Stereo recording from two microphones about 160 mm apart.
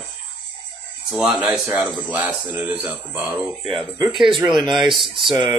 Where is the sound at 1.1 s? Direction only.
5° right (ahead or behind).